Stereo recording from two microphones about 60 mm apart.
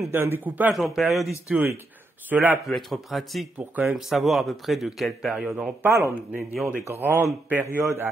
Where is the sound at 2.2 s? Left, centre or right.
Right.